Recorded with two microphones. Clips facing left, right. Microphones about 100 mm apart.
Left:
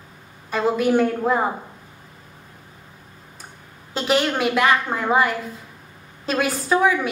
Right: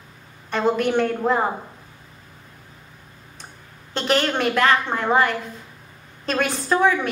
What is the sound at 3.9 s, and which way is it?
A woman's voice, 5° left (ahead or behind).